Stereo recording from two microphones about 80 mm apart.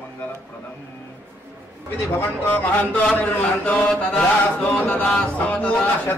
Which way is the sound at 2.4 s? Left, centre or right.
Left.